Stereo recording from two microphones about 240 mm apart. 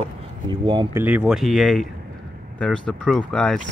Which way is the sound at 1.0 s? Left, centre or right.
Centre.